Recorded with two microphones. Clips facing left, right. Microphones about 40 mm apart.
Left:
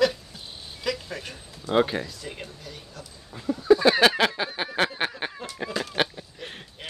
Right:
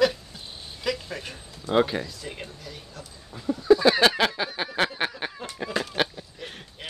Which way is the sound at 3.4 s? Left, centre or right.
Centre.